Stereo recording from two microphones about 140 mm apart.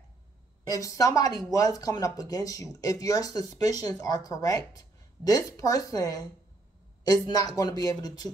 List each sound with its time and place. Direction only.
0.7 s speech: 25° left (ahead or behind)
7.2 s speech: 25° left (ahead or behind)